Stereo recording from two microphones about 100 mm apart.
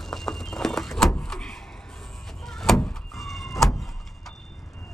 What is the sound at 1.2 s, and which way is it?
Vehicle, 5° left (ahead or behind).